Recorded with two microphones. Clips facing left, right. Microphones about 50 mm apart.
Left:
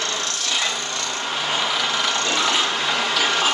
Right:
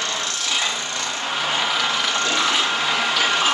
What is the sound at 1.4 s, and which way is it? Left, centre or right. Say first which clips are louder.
Vehicle: right 1 dB; centre.